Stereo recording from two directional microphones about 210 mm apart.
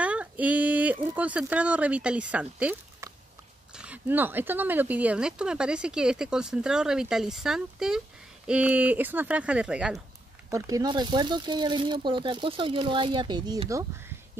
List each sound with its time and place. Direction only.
0.0 s speech: 5° right (ahead or behind)
10.5 s speech: 15° right (ahead or behind)